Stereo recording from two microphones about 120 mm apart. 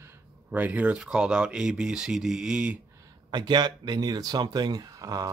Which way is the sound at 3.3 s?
35° right (ahead or behind).